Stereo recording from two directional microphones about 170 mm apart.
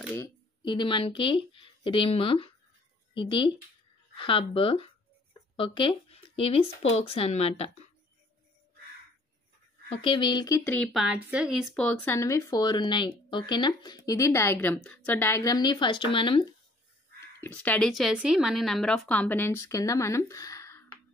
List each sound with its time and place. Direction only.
0.6 s speech: 30° left (ahead or behind)
9.8 s speech: 30° left (ahead or behind)
10.7 s speech: centre (ahead or behind); by 16.4 s 30° left (ahead or behind)
17.4 s speech: 10° left (ahead or behind)